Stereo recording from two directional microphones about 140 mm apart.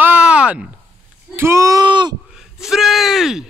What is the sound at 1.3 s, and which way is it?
Speech, 20° right (ahead or behind).